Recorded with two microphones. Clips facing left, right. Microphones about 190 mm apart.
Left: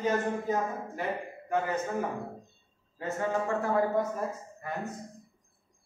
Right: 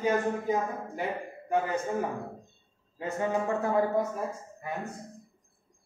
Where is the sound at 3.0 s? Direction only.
15° right (ahead or behind).